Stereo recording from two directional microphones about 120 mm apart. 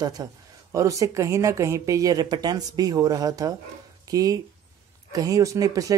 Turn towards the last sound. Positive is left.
turn(degrees=-30)  # may be behind; listen again after turning